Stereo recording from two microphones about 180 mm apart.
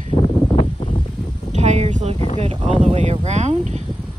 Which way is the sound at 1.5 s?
40° right (ahead or behind).